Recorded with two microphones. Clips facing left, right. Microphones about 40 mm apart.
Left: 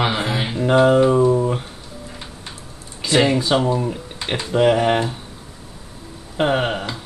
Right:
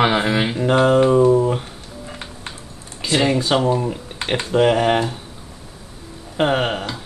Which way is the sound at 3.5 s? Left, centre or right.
Centre.